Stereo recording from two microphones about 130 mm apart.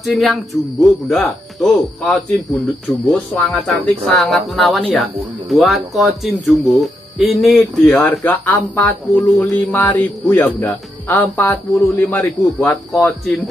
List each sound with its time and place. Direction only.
0.0 s a man's voice: centre (ahead or behind); by 12.7 s 25° left (ahead or behind)